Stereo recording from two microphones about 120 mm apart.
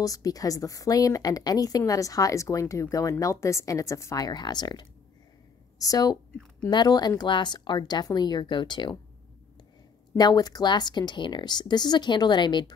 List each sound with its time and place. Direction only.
0.0 s a woman's voice: 30° left (ahead or behind)
10.1 s speech: 35° left (ahead or behind)